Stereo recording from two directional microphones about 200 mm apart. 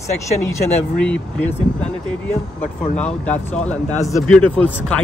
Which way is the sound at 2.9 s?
5° left (ahead or behind).